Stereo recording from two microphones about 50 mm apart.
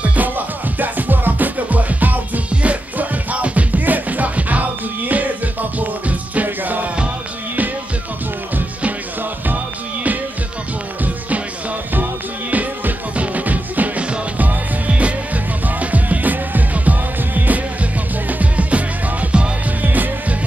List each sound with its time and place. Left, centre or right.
0.0 s music: right
11.9 s music: right
19.8 s music: right